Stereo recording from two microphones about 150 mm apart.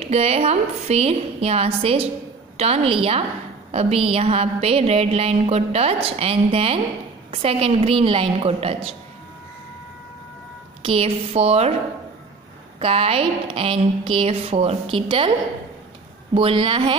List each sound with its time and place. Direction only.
0.0 s a sound: 45° right (ahead or behind)
2.5 s a woman's voice: 45° right (ahead or behind)
3.7 s a sound: 40° right (ahead or behind)
7.2 s a woman's voice: 40° right (ahead or behind)
10.8 s a woman's voice: 40° right (ahead or behind)
12.7 s a woman's voice: 40° right (ahead or behind)
16.3 s a woman's voice: 35° right (ahead or behind)